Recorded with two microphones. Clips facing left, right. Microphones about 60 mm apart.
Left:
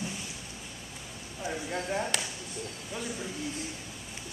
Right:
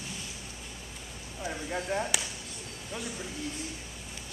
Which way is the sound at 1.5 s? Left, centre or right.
Centre.